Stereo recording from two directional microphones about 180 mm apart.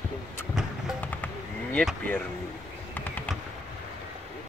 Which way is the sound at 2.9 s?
10° left (ahead or behind).